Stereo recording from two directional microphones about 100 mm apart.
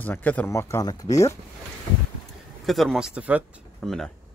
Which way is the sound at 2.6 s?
Centre (ahead or behind).